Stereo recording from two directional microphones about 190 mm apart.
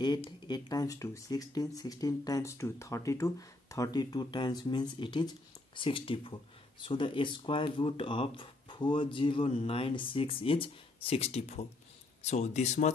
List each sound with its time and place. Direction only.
0.0 s speech: 25° left (ahead or behind)